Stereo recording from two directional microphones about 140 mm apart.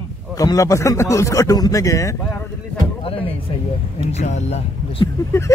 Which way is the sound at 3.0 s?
40° left (ahead or behind).